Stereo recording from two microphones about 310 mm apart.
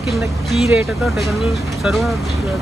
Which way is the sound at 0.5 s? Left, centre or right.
Centre.